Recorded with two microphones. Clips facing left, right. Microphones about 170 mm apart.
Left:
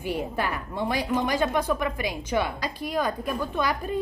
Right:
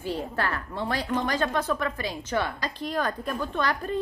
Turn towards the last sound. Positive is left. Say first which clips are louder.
# left 1 dB
turn(degrees=10)  # may be behind; listen again after turning